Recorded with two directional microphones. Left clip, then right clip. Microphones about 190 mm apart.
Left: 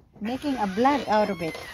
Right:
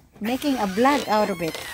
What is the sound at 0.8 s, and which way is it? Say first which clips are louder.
Speech: right 2 dB; 5° right (ahead or behind).